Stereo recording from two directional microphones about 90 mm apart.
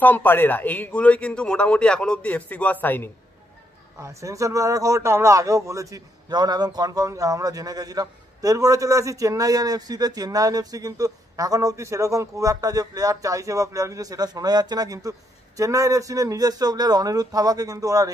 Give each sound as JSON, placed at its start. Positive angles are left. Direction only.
{"t": 0.0, "sound": "a man's voice", "side_deg": 20}
{"t": 4.0, "sound": "a man's voice", "side_deg": -35}
{"t": 6.3, "sound": "a man's voice", "side_deg": -50}